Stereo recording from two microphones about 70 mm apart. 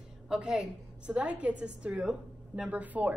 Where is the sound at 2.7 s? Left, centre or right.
Right.